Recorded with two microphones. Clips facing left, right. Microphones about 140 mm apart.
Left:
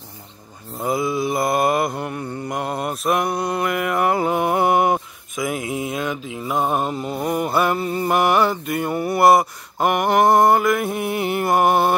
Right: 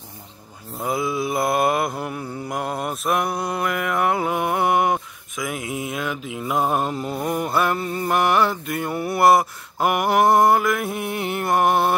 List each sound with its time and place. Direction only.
0.7 s mantra: centre (ahead or behind)